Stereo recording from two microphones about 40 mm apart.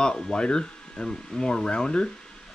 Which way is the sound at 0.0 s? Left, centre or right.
Centre.